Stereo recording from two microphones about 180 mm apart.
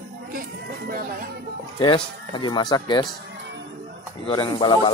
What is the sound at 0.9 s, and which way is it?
Speech, 55° right (ahead or behind).